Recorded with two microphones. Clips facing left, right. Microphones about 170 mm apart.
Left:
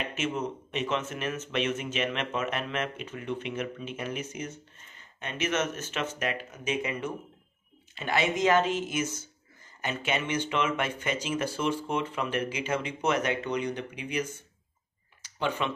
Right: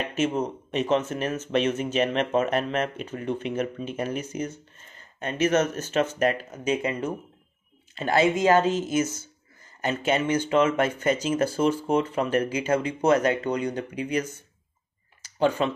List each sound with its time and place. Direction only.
0.1 s speech: 40° right (ahead or behind)
15.3 s speech: 40° right (ahead or behind)